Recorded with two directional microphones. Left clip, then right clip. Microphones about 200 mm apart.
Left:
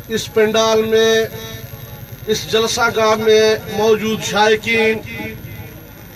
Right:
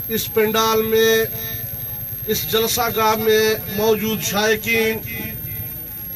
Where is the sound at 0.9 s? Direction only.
50° right (ahead or behind).